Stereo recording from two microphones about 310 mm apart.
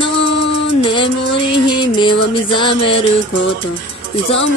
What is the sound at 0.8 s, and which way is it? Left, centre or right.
Music, centre.